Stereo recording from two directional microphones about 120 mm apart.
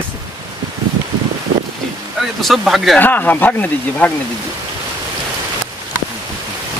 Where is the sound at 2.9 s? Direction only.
15° left (ahead or behind).